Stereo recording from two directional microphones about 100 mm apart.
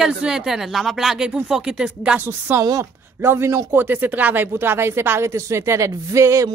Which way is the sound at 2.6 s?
35° right (ahead or behind).